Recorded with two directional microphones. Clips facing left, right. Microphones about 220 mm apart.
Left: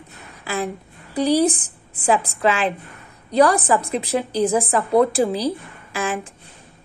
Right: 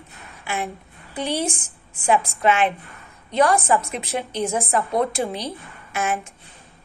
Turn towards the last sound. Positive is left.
turn(degrees=30)  # may be behind; listen again after turning